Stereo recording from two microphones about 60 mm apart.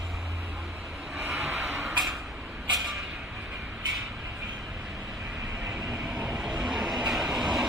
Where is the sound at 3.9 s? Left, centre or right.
Centre.